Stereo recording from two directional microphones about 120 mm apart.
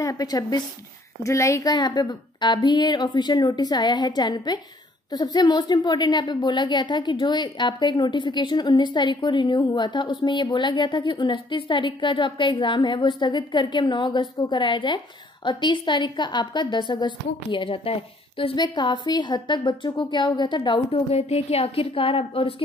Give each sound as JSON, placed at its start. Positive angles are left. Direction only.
{"t": 0.0, "sound": "a woman's voice", "side_deg": 30}
{"t": 18.6, "sound": "a woman's voice", "side_deg": 35}
{"t": 21.1, "sound": "a woman's voice", "side_deg": 60}